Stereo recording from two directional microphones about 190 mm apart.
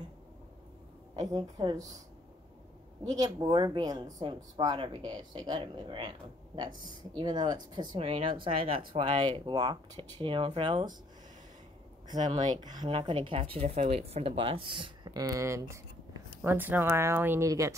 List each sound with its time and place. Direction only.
1.1 s speech: 20° right (ahead or behind)
3.1 s speech: 20° right (ahead or behind)
12.1 s speech: 25° right (ahead or behind)